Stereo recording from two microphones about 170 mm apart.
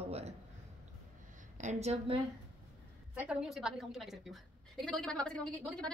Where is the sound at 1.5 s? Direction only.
40° right (ahead or behind).